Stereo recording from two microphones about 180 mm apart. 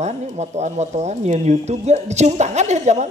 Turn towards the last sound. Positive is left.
turn(degrees=-40)  # may be behind; listen again after turning